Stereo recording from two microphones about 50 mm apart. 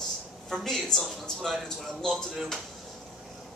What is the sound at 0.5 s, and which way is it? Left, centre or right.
Speech, centre.